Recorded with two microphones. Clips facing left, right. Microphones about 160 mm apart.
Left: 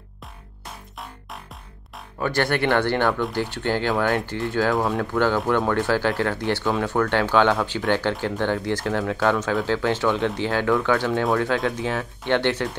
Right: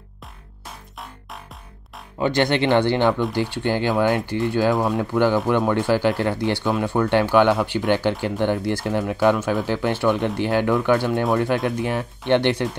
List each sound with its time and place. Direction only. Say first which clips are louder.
2.1 s speech: right 3 dB; 20° right (ahead or behind)
4.7 s speech: right 1 dB; centre (ahead or behind)
5.1 s speech: right 2 dB; 15° right (ahead or behind)